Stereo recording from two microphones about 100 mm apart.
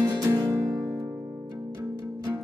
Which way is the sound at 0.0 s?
45° right (ahead or behind).